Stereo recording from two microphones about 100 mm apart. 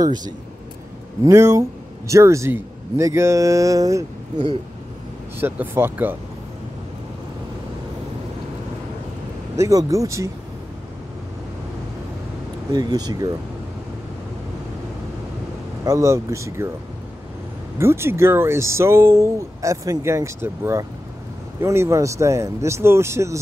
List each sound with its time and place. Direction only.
0.0 s speech: 45° right (ahead or behind)
1.2 s speech: 30° right (ahead or behind)
5.4 s speech: 20° right (ahead or behind)
9.6 s speech: 35° right (ahead or behind)
12.7 s speech: 40° right (ahead or behind)
15.8 s speech: 30° right (ahead or behind)
17.7 s speech: 25° right (ahead or behind)